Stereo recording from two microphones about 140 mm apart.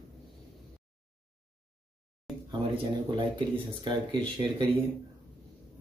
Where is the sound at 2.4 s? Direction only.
30° right (ahead or behind).